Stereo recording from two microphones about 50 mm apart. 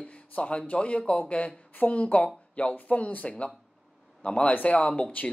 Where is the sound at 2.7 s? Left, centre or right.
Left.